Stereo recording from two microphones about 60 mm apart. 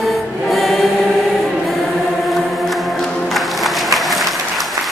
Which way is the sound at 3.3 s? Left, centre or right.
Centre.